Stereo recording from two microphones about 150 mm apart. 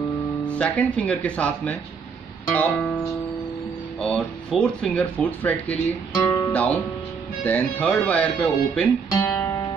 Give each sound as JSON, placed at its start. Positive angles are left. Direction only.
{"t": 0.5, "sound": "speech", "side_deg": 10}
{"t": 4.0, "sound": "speech", "side_deg": 5}
{"t": 6.1, "sound": "speech", "side_deg": 25}
{"t": 6.5, "sound": "speech", "side_deg": 10}
{"t": 9.1, "sound": "guitar", "side_deg": 15}